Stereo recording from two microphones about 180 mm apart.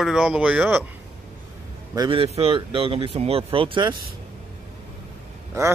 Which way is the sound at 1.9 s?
25° right (ahead or behind).